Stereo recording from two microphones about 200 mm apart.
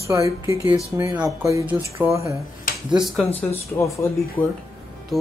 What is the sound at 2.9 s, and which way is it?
Speech, centre (ahead or behind).